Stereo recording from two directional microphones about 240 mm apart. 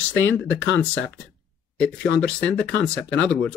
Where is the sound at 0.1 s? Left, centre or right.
Left.